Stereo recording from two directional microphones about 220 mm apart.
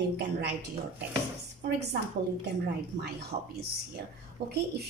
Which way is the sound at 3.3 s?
30° right (ahead or behind).